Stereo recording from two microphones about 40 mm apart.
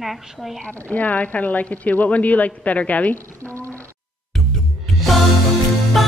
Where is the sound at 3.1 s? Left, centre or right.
Left.